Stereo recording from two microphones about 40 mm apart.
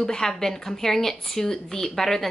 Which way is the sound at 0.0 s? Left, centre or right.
Centre.